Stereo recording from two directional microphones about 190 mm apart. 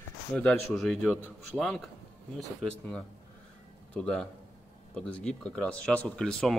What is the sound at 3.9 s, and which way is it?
Speech, 5° left (ahead or behind).